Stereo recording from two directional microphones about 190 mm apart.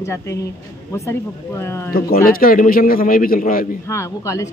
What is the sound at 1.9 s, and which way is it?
A man's voice, 50° left (ahead or behind).